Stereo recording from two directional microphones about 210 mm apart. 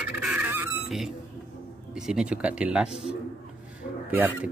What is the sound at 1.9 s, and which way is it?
Speech, 5° right (ahead or behind).